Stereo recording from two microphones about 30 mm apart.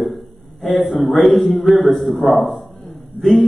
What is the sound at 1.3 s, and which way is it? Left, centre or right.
Speech, left.